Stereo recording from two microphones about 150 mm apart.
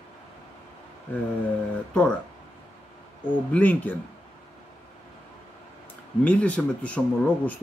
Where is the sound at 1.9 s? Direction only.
10° left (ahead or behind).